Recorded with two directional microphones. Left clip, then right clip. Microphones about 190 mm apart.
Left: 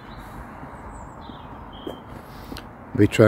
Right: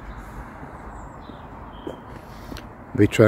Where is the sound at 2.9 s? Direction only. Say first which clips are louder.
Even; centre (ahead or behind).